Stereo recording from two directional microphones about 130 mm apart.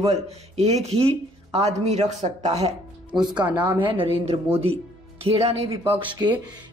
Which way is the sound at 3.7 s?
40° right (ahead or behind).